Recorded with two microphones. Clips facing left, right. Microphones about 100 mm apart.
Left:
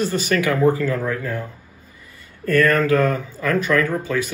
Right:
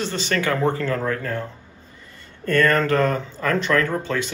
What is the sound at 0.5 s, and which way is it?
Speech, 10° left (ahead or behind).